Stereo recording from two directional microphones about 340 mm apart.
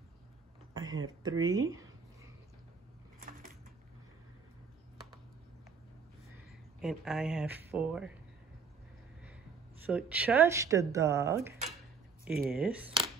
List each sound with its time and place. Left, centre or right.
0.7 s speech: centre
1.7 s a sound: centre
3.2 s typewriter: right
6.8 s speech: centre
9.9 s speech: centre